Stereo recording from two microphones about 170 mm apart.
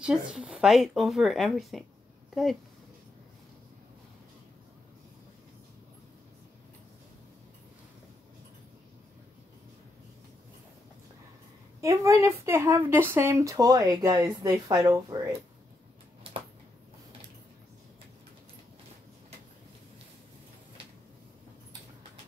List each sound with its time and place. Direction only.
0.0 s speech: 5° right (ahead or behind)
11.8 s speech: 20° right (ahead or behind)